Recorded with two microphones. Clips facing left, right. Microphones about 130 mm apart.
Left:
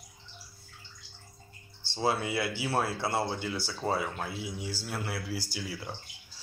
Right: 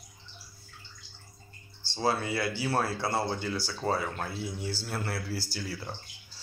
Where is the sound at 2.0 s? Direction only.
20° left (ahead or behind).